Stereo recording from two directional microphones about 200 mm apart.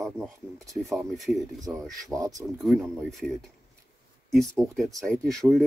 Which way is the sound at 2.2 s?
15° right (ahead or behind).